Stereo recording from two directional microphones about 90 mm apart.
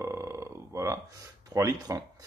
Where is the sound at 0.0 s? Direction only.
30° right (ahead or behind).